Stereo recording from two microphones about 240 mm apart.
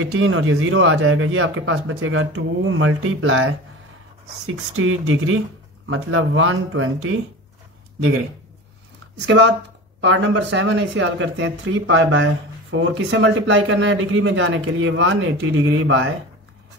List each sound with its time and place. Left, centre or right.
0.1 s a man's voice: right
4.5 s a man's voice: right
9.2 s a man's voice: right